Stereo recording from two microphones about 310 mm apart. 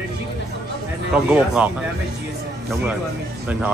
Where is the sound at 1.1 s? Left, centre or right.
Centre.